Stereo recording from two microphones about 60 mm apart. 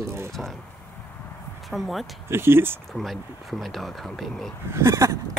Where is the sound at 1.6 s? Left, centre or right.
Centre.